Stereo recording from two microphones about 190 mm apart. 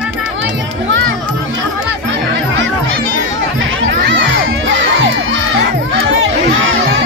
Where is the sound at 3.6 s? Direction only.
80° right.